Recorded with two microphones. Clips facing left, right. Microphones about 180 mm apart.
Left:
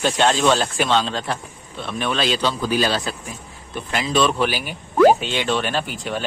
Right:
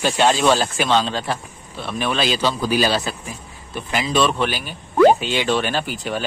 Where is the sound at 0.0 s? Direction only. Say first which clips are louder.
Right 1 dB; 5° right (ahead or behind).